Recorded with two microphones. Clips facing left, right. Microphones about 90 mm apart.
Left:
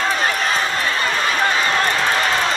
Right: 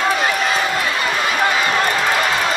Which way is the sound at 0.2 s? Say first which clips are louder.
Right 1 dB; 40° left (ahead or behind).